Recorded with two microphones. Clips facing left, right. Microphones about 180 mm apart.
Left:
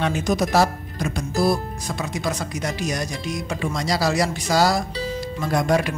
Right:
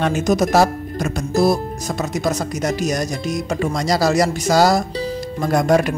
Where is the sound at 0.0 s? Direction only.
45° right (ahead or behind).